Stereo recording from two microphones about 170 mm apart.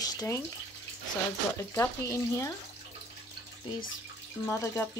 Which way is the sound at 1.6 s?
20° left (ahead or behind).